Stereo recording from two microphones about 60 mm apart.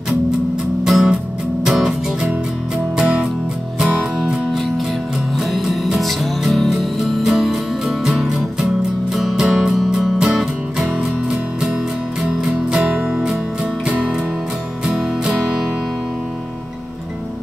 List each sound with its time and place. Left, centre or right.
0.8 s music: centre
3.0 s music: centre
5.7 s music: centre
13.8 s music: centre